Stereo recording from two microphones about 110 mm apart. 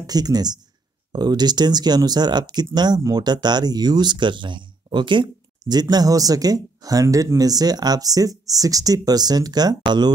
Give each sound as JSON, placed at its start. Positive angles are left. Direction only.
{"t": 0.0, "sound": "speech", "side_deg": -35}